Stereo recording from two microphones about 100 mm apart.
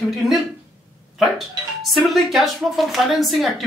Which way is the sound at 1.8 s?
Centre (ahead or behind).